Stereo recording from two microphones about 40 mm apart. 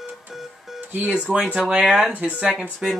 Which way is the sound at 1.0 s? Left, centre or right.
Right.